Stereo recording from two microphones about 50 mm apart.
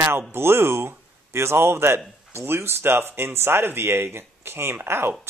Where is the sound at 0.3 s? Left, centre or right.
Right.